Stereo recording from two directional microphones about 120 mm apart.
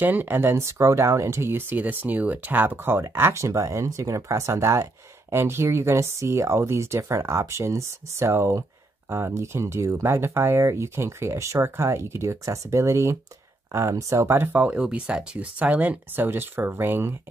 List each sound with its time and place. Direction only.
0.0 s speech: 15° right (ahead or behind)